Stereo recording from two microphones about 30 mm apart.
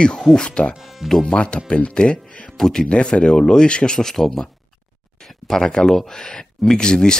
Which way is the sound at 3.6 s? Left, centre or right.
Left.